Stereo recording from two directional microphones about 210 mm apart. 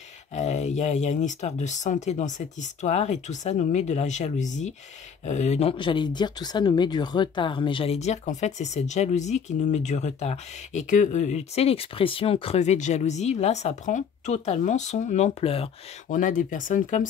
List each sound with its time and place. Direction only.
0.3 s speech: 35° left (ahead or behind)